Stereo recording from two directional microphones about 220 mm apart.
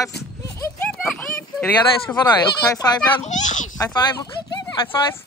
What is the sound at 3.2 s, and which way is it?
Speech, 35° left (ahead or behind).